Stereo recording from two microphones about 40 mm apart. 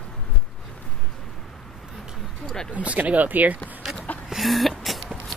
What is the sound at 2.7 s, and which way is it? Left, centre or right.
Speech, right.